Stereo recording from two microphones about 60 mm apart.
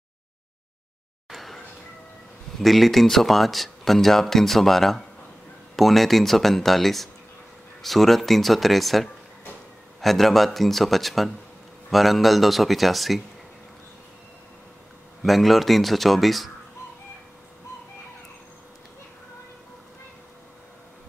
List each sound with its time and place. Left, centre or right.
1.3 s a sound: centre
2.6 s speech: centre
15.2 s speech: centre